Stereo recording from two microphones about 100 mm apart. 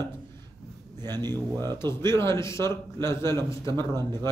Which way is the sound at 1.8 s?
25° left (ahead or behind).